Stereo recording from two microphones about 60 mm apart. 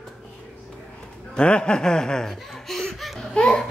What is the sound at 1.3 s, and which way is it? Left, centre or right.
Laughter, centre.